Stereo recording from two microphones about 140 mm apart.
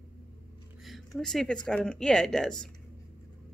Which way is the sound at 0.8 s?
Centre (ahead or behind).